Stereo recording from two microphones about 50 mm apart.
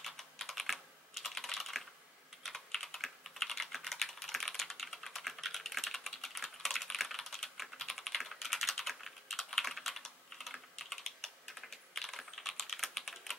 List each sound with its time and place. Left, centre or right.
0.0 s computer keyboard: centre
2.4 s typing: centre